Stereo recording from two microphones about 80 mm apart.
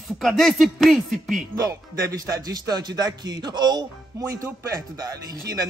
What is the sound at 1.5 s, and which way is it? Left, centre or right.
Speech, right.